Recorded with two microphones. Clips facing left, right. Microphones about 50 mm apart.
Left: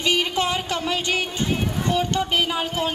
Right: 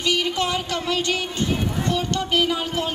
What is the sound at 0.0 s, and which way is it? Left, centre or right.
Music, left.